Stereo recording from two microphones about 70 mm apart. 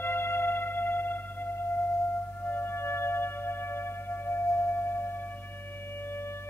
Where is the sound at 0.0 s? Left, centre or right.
Left.